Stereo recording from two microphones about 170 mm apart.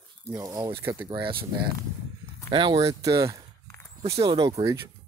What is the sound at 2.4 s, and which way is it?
Speech, 30° right (ahead or behind).